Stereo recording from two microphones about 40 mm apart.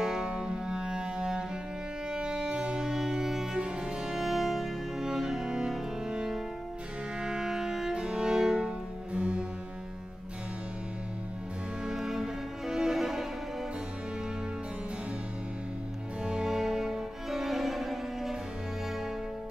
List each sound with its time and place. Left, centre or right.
0.0 s music: centre
11.8 s music: centre
16.4 s music: centre